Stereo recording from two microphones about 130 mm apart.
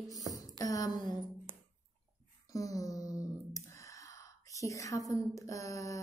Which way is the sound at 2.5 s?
25° left (ahead or behind).